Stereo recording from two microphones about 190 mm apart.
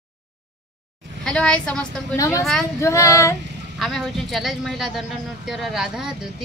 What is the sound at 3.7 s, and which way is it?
Speech, centre (ahead or behind).